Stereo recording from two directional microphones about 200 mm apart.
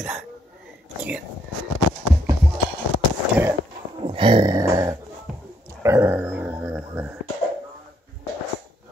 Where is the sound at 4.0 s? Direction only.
25° right (ahead or behind).